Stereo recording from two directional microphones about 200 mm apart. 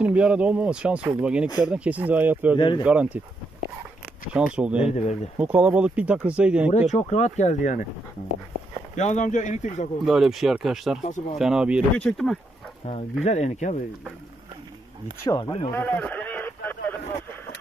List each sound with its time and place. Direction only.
0.0 s speech: 5° right (ahead or behind)
2.5 s speech: 25° left (ahead or behind)
2.8 s speech: 5° right (ahead or behind)
4.3 s speech: 5° right (ahead or behind)
6.9 s speech: 35° left (ahead or behind)
8.9 s speech: 35° left (ahead or behind)
10.0 s speech: centre (ahead or behind)
11.0 s speech: 35° left (ahead or behind)
11.3 s speech: centre (ahead or behind)
12.8 s speech: 30° left (ahead or behind)
15.2 s speech: 20° left (ahead or behind)
15.7 s a sound: 10° left (ahead or behind)